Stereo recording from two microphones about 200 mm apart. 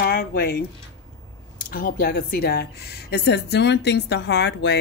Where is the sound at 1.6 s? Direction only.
45° left (ahead or behind).